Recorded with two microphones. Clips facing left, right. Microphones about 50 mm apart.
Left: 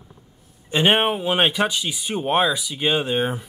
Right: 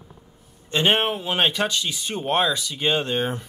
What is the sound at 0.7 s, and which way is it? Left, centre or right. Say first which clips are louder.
Speech: left 2 dB; centre.